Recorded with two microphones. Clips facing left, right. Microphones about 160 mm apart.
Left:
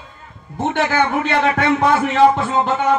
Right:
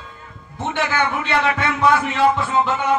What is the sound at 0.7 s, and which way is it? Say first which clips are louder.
A man's voice: left 3 dB; 45° left (ahead or behind).